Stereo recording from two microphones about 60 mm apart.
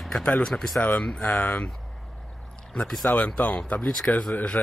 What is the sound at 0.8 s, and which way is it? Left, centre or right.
Speech, left.